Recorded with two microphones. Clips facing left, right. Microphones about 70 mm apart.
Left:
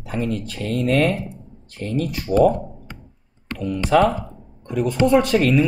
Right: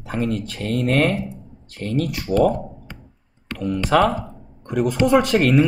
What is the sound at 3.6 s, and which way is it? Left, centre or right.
Speech, right.